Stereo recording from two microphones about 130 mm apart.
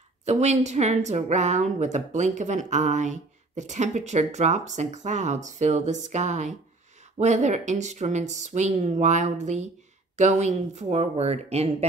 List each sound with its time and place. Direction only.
0.2 s a woman's voice: 60° right (ahead or behind)